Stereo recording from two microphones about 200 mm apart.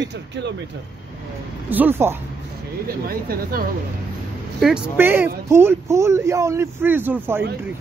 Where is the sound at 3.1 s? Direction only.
45° right (ahead or behind).